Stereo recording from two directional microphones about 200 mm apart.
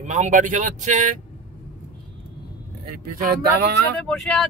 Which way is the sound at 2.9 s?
45° right (ahead or behind).